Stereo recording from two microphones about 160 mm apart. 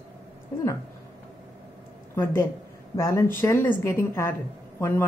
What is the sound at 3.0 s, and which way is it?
A woman's voice, 20° left (ahead or behind).